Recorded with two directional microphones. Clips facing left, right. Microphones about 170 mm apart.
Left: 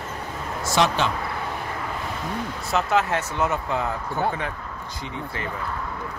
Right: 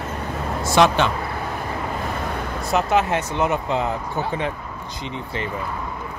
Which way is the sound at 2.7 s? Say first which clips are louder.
Right 3 dB; 20° right (ahead or behind).